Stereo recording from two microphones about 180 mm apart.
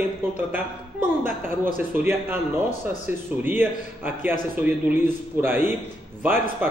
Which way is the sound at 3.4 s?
10° right (ahead or behind).